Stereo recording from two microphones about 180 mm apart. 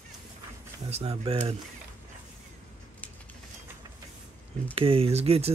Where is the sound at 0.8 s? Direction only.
35° right (ahead or behind).